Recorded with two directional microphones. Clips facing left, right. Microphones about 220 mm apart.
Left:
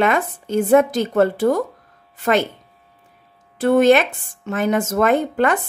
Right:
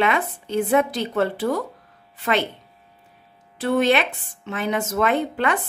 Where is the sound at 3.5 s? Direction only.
50° left (ahead or behind).